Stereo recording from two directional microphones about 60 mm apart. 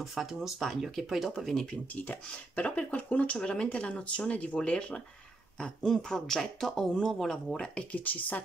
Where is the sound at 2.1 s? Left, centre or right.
Left.